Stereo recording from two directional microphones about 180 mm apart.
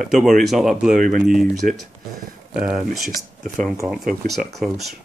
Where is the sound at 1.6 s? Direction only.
50° right (ahead or behind).